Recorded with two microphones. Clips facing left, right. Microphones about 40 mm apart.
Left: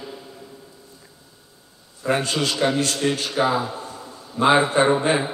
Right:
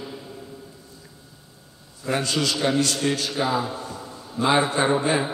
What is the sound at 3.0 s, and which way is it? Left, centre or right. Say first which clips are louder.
Speech: left 2 dB; centre.